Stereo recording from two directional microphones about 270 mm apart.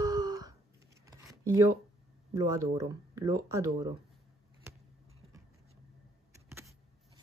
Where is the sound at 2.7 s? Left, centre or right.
Centre.